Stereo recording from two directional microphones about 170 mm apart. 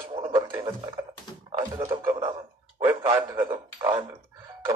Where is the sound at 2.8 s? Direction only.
30° right (ahead or behind).